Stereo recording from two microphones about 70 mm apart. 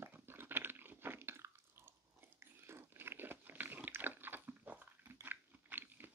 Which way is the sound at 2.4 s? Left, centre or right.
Right.